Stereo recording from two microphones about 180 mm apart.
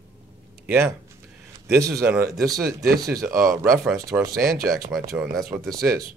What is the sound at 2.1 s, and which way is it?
Speech, 15° right (ahead or behind).